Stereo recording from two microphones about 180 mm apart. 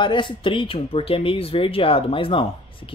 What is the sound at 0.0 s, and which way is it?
Speech, 25° left (ahead or behind).